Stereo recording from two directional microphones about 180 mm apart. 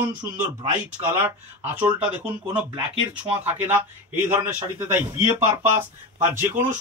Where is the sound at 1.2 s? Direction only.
10° right (ahead or behind).